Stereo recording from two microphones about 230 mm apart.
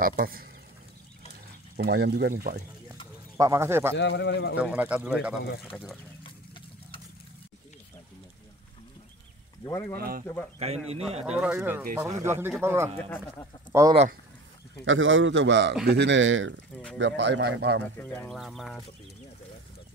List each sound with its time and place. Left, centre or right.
0.0 s speech: right
1.8 s a man's voice: right
3.3 s a man's voice: centre
3.9 s a man's voice: left
4.6 s speech: centre
6.2 s a sound: left
9.7 s speech: centre
9.9 s speech: right
10.2 s speech: centre
10.9 s a man's voice: right
11.3 s a man's voice: centre
14.9 s a man's voice: right
17.9 s speech: centre